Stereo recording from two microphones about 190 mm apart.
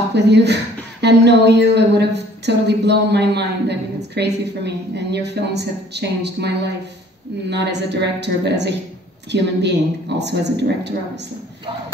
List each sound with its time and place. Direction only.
0.1 s a woman's voice: 65° right (ahead or behind)